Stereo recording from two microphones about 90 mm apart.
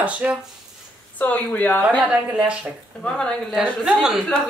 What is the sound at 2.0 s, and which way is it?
Speech, 10° right (ahead or behind).